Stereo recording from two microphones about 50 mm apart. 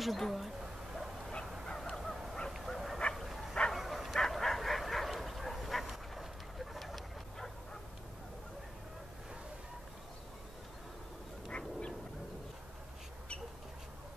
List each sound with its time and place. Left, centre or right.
0.0 s a woman's voice: centre
0.9 s bow-wow: centre
1.9 s crow: centre
2.5 s dog: centre
3.2 s bow-wow: centre
11.4 s duck: centre